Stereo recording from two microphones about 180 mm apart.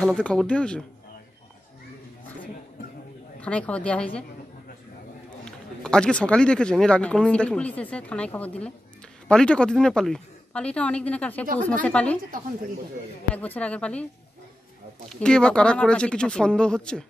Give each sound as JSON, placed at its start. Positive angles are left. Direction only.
{"t": 0.0, "sound": "speech", "side_deg": 5}
{"t": 3.4, "sound": "speech", "side_deg": 5}
{"t": 5.4, "sound": "speech", "side_deg": 5}
{"t": 11.4, "sound": "speech", "side_deg": -50}
{"t": 11.8, "sound": "speech", "side_deg": 5}
{"t": 13.3, "sound": "speech", "side_deg": 10}
{"t": 15.0, "sound": "speech", "side_deg": 5}